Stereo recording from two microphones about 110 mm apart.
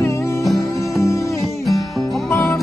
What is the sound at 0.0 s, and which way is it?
Music, 25° left (ahead or behind).